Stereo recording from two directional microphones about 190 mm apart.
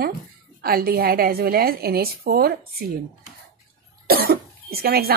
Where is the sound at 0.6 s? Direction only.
50° right (ahead or behind).